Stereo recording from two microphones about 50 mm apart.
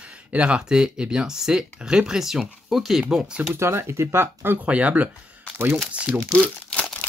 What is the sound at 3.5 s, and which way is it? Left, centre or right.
Speech, right.